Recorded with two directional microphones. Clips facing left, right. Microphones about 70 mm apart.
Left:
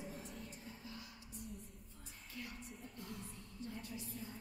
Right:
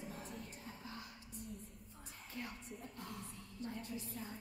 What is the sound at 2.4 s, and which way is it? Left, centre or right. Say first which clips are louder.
Music: right 3 dB; right.